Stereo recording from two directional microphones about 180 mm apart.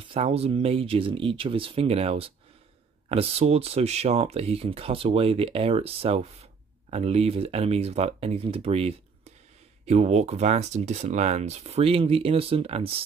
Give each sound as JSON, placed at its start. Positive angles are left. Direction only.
{"t": 0.1, "sound": "speech", "side_deg": -35}